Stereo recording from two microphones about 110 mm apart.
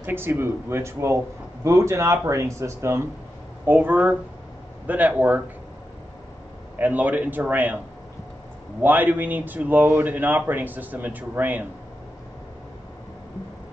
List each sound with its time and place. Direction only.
0.0 s speech: 20° right (ahead or behind)
6.8 s speech: 15° right (ahead or behind)
8.8 s speech: 15° right (ahead or behind)